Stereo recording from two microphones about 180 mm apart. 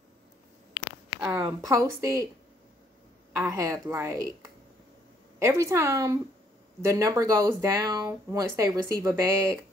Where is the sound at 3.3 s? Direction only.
20° right (ahead or behind).